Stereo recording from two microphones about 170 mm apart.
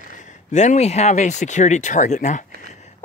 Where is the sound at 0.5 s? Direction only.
40° left (ahead or behind).